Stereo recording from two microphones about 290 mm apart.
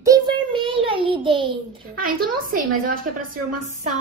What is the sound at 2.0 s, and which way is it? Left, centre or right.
A woman's voice, right.